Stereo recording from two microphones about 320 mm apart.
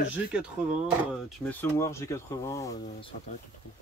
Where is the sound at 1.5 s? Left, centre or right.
Centre.